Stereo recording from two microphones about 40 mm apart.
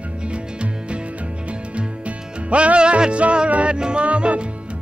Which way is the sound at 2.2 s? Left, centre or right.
Centre.